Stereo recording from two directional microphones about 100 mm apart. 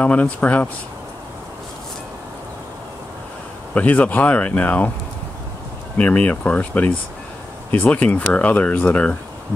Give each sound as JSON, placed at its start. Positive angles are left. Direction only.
{"t": 0.0, "sound": "speech", "side_deg": 15}
{"t": 3.7, "sound": "speech", "side_deg": 15}
{"t": 5.9, "sound": "speech", "side_deg": 15}